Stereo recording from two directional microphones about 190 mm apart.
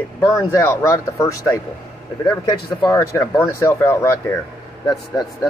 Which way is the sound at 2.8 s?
15° left (ahead or behind).